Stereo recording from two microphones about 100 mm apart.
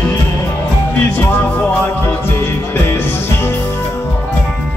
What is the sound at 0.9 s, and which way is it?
Music, 20° left (ahead or behind).